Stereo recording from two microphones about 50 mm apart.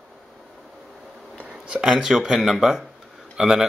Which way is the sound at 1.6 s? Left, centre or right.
Right.